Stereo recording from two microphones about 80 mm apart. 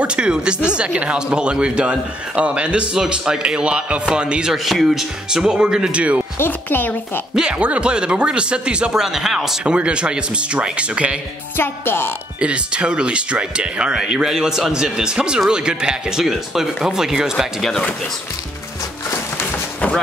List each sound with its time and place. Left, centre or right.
0.0 s speech: centre
6.3 s speech: left
7.3 s speech: centre
11.5 s speech: left
12.4 s speech: centre
17.6 s speech: centre